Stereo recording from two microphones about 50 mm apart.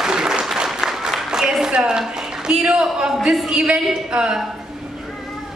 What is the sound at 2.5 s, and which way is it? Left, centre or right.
A man's voice, centre.